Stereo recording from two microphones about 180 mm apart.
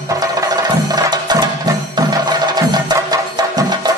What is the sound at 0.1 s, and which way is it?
Music, 20° right (ahead or behind).